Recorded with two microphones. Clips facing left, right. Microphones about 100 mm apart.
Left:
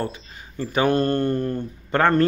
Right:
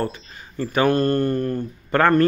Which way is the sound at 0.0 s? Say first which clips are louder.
Right 2 dB; 15° left (ahead or behind).